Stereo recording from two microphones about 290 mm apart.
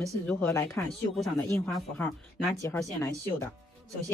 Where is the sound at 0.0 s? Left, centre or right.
Centre.